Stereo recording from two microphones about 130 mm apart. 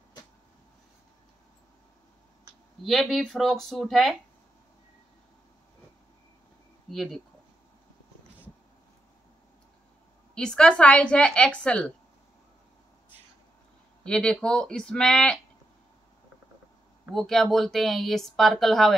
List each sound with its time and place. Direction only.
2.8 s speech: centre (ahead or behind)
6.9 s speech: centre (ahead or behind)
10.3 s a woman's voice: 5° left (ahead or behind)
14.0 s a woman's voice: 5° left (ahead or behind)
17.1 s speech: 5° left (ahead or behind)